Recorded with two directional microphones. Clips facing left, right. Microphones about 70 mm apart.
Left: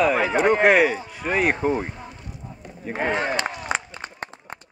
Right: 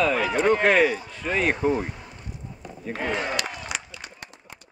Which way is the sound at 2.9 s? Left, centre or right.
Left.